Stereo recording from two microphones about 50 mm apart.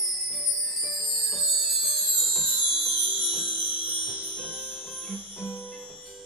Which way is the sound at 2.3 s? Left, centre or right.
Centre.